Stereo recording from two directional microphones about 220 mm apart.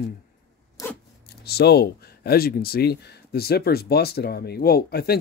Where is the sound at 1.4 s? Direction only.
45° left (ahead or behind).